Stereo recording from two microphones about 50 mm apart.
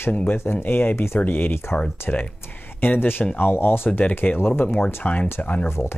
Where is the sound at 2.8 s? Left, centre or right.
Left.